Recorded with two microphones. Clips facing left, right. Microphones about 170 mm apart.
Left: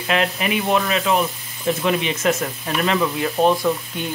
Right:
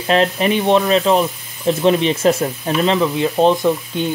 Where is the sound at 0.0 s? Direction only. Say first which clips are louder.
Right 6 dB; 35° right (ahead or behind).